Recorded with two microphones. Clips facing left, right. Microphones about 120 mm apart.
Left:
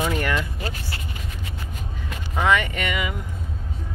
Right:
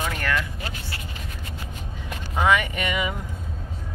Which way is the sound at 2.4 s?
10° right (ahead or behind).